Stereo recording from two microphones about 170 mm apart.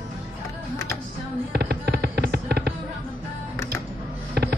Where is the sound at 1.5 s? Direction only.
70° right (ahead or behind).